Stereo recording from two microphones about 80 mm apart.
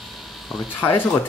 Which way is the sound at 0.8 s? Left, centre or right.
Left.